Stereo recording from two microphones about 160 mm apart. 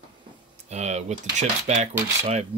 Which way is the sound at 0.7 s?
45° right (ahead or behind).